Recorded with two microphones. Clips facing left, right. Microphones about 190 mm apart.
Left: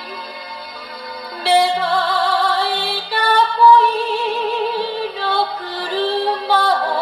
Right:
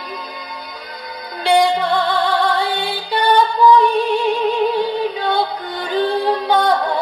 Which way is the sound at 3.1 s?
20° right (ahead or behind).